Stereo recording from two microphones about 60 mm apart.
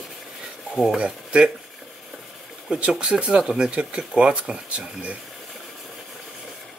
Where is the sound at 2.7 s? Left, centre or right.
Centre.